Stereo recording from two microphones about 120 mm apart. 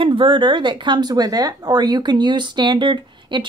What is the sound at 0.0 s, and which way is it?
Speech, 45° right (ahead or behind).